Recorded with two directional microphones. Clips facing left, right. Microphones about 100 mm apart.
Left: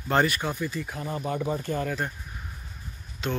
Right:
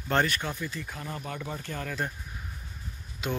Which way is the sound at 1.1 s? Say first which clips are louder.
Left 8 dB; 20° left (ahead or behind).